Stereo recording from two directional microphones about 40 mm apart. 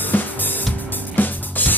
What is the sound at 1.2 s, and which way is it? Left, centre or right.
Music, left.